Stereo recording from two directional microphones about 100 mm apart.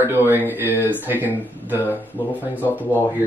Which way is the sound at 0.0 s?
20° right (ahead or behind).